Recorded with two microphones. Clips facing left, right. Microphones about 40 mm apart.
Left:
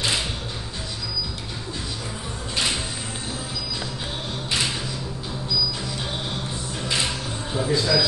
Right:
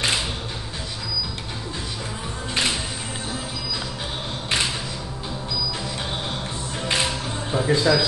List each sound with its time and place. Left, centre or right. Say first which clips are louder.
7.5 s speech: right 3 dB; right